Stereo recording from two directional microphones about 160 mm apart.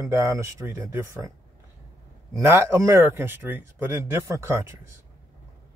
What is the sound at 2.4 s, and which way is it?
Speech, 15° right (ahead or behind).